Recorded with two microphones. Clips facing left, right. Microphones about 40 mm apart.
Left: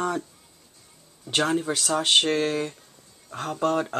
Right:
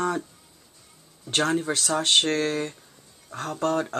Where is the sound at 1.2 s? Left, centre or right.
Centre.